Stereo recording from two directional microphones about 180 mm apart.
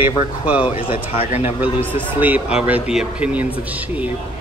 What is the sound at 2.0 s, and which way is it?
Speech, 10° right (ahead or behind).